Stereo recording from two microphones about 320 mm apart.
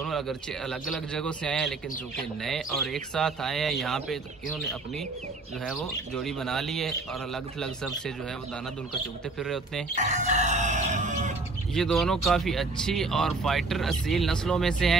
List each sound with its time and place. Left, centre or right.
0.0 s a man's voice: centre
5.7 s a man's voice: centre
9.4 s a man's voice: centre
9.9 s chicken: right
11.7 s a man's voice: centre